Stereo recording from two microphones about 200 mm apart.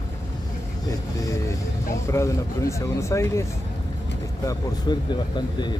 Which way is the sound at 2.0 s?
15° left (ahead or behind).